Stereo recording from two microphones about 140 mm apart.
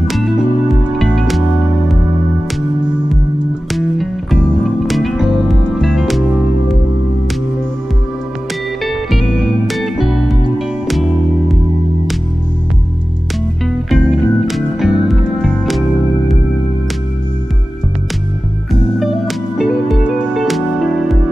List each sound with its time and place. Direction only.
0.7 s music: centre (ahead or behind)
3.7 s music: centre (ahead or behind)
8.8 s music: centre (ahead or behind)
13.8 s music: centre (ahead or behind)
18.7 s music: centre (ahead or behind)